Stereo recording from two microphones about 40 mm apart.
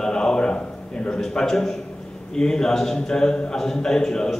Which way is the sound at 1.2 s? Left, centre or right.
Centre.